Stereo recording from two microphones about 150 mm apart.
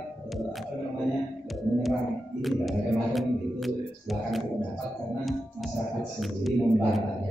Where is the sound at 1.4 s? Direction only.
Centre (ahead or behind).